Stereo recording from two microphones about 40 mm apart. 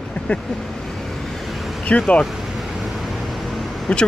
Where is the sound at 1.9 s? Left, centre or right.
Left.